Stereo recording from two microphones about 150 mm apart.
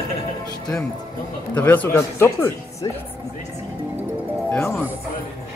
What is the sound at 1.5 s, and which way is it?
Speech, 10° left (ahead or behind).